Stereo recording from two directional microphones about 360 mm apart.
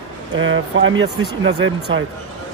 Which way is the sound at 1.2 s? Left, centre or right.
Centre.